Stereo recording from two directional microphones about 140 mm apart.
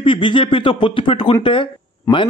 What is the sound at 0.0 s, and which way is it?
A man's voice, 35° left (ahead or behind).